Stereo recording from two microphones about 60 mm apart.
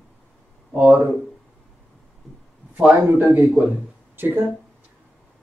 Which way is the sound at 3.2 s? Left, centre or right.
Right.